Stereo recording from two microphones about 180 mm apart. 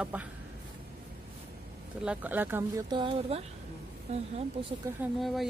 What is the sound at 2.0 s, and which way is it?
Speech, 10° right (ahead or behind).